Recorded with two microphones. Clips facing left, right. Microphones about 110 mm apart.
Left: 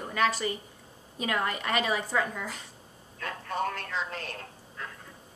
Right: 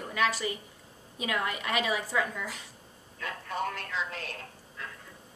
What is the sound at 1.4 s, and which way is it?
A woman's voice, 40° left (ahead or behind).